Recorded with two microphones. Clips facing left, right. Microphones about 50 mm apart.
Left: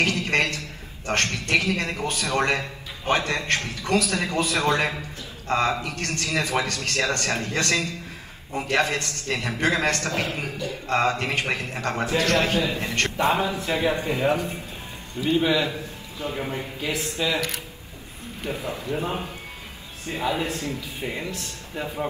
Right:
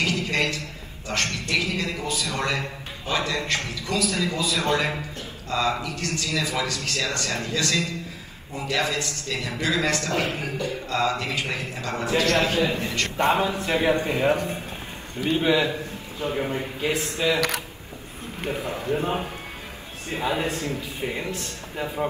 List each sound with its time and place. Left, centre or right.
0.0 s a man's voice: left
10.4 s a man's voice: right
10.9 s a man's voice: left
12.5 s a man's voice: right
12.8 s a man's voice: left
13.2 s a man's voice: right
20.1 s a man's voice: right